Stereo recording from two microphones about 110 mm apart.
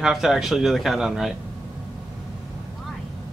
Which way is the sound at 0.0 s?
5° right (ahead or behind).